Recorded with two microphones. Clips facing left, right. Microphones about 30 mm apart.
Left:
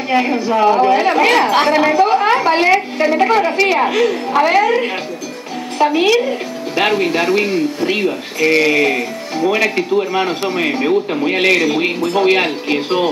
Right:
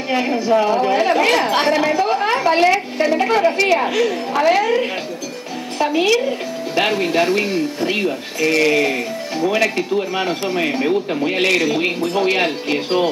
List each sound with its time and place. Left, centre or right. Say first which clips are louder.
0.1 s a woman's voice: left 1 dB; centre